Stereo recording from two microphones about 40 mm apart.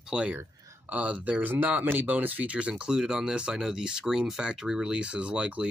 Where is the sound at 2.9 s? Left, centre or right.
Centre.